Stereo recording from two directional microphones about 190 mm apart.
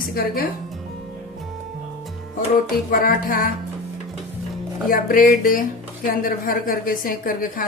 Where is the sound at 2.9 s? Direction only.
50° left (ahead or behind).